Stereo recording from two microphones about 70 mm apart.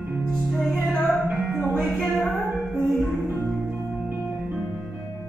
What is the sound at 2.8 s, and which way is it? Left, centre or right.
Music, right.